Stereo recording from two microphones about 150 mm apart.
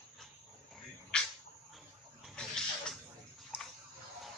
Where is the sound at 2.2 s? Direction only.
5° left (ahead or behind).